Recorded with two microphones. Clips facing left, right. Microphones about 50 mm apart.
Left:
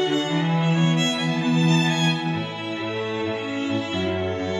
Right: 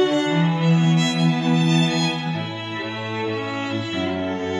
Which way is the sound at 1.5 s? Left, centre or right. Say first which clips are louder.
Right 1 dB; right.